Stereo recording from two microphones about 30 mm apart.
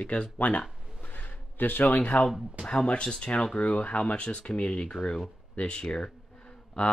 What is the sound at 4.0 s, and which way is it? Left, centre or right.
Speech, left.